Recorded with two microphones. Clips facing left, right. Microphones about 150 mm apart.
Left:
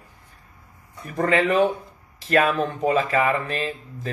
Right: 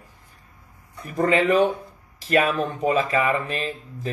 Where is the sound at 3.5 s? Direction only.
20° right (ahead or behind).